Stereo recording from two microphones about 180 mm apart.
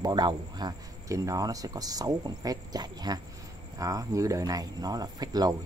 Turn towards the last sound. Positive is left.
turn(degrees=-20)  # may be behind; listen again after turning